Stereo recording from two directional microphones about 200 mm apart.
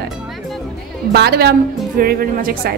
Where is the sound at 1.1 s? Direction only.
55° right (ahead or behind).